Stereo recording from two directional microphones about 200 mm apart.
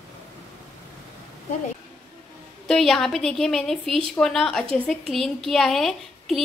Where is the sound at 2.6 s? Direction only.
Centre (ahead or behind).